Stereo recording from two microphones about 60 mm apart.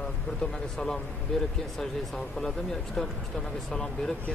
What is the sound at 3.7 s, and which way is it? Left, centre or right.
Speech, centre.